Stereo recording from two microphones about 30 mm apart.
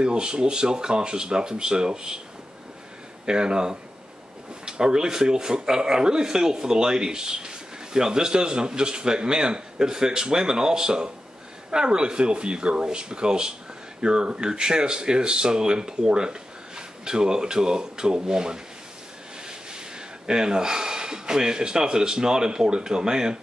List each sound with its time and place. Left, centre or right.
0.0 s speech: right
3.3 s speech: right
20.2 s speech: right